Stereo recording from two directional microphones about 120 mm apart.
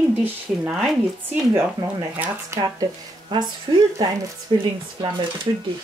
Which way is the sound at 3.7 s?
40° right (ahead or behind).